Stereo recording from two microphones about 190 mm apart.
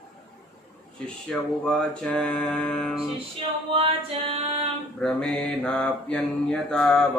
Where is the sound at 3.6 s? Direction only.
30° right (ahead or behind).